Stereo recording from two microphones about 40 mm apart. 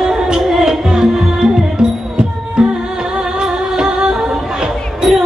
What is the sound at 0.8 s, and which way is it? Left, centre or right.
Music, right.